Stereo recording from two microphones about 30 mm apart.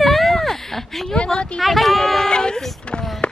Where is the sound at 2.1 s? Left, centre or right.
Left.